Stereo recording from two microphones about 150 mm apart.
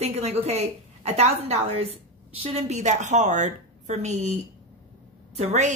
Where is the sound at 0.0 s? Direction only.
45° right (ahead or behind).